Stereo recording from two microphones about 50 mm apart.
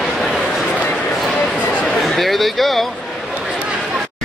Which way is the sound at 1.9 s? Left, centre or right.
Centre.